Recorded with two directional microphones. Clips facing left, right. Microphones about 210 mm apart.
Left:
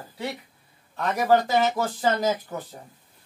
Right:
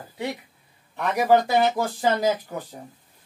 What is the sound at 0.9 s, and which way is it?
Speech, 15° right (ahead or behind).